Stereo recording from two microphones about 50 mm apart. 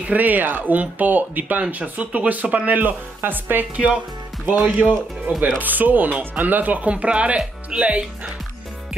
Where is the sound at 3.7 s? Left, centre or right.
Right.